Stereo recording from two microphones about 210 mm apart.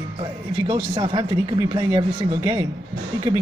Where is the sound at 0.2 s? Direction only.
30° right (ahead or behind).